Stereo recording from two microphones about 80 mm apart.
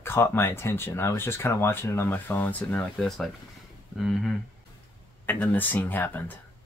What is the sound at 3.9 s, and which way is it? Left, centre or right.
Speech, centre.